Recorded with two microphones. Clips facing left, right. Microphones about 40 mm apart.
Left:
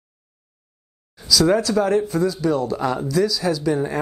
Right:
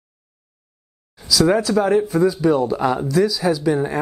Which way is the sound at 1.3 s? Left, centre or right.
Centre.